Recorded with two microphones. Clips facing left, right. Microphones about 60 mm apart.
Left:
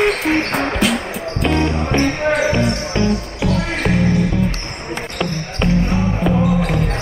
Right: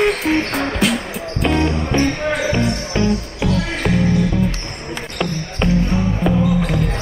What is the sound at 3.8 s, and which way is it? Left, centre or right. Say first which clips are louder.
Music: even; centre.